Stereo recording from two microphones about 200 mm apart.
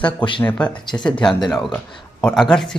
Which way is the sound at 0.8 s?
20° left (ahead or behind).